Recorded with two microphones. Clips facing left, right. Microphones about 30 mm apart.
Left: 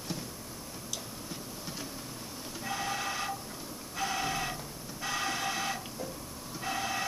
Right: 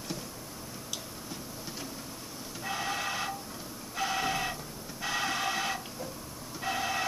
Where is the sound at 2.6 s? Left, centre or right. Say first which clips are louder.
Right 1 dB; centre.